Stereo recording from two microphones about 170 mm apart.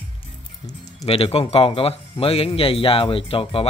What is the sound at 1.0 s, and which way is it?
Speech, 35° left (ahead or behind).